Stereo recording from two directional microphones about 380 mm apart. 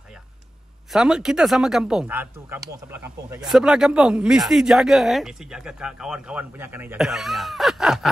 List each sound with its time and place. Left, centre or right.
0.9 s speech: centre